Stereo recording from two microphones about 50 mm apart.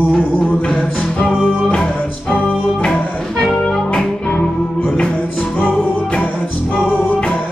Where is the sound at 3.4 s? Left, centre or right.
Centre.